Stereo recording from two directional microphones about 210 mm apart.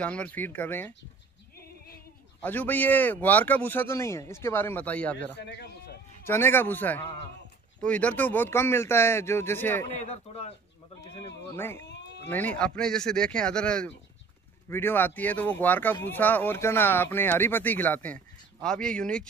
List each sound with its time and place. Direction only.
0.0 s speech: 5° left (ahead or behind)
2.4 s speech: 10° left (ahead or behind)
5.4 s a sound: 50° left (ahead or behind)
6.2 s speech: 10° left (ahead or behind)
9.9 s a man's voice: 30° left (ahead or behind)
11.5 s speech: 10° left (ahead or behind)